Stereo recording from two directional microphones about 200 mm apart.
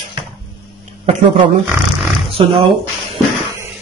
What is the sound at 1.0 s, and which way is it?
Speech, 25° right (ahead or behind).